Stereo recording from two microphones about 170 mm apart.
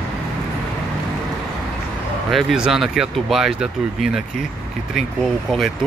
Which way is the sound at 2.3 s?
5° right (ahead or behind).